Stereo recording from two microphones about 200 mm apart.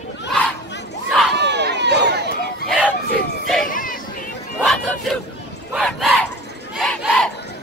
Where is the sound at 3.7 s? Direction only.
45° left (ahead or behind).